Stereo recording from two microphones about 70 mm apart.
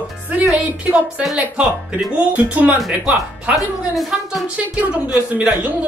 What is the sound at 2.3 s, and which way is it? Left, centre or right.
Speech, right.